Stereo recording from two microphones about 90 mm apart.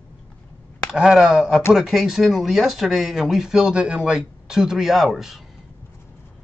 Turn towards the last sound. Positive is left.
turn(degrees=0)  # may be behind; listen again after turning